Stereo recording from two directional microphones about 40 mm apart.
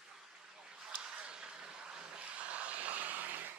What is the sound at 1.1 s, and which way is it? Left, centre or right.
Vehicle, right.